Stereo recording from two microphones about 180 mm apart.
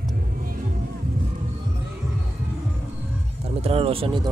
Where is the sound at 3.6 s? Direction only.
30° right (ahead or behind).